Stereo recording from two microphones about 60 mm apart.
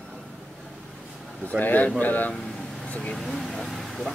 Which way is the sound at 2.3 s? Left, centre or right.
Centre.